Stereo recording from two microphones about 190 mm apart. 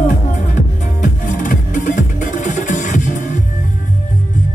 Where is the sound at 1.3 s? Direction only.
45° left (ahead or behind).